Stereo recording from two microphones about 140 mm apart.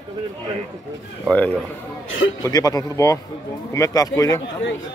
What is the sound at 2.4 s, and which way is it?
A man's voice, 25° left (ahead or behind).